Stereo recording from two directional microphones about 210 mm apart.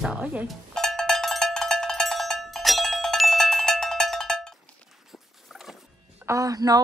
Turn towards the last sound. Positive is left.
turn(degrees=-15)  # may be behind; listen again after turning